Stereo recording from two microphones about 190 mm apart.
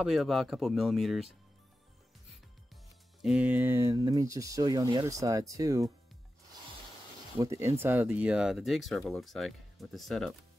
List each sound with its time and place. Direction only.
0.0 s speech: centre (ahead or behind)
3.2 s speech: 5° right (ahead or behind)
7.3 s speech: 15° right (ahead or behind); by 10.3 s centre (ahead or behind)